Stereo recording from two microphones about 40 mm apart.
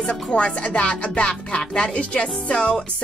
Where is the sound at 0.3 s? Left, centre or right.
Left.